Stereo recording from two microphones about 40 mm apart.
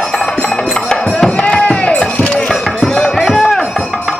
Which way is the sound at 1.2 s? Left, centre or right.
Left.